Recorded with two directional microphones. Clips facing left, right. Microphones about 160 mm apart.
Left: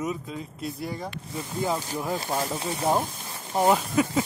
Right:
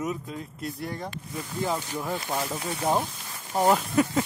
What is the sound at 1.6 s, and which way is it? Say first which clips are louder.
Speech: left 2 dB; 10° left (ahead or behind).